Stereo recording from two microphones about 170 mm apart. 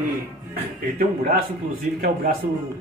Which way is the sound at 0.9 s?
55° right (ahead or behind).